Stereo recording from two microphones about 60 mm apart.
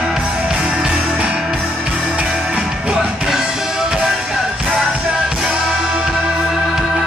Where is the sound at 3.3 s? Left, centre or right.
Centre.